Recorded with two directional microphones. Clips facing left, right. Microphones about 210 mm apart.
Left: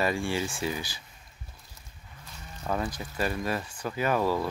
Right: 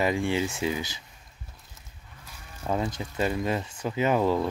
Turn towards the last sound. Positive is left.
turn(degrees=-20)  # may be behind; listen again after turning